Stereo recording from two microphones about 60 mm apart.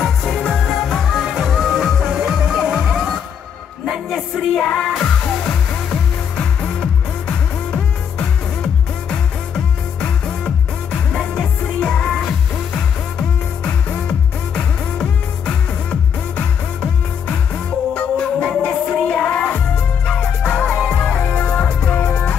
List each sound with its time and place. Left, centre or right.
0.0 s music: centre
0.7 s music: centre
4.6 s music: centre
9.9 s music: centre
14.0 s music: centre
17.9 s music: centre